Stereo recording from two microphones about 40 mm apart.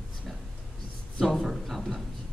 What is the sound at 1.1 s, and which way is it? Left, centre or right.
Speech, centre.